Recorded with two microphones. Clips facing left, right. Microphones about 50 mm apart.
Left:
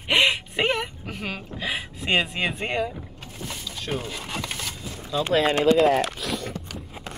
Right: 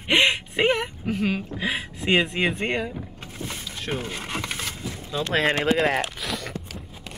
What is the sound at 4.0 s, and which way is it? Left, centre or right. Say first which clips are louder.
Speech: right 1 dB; right.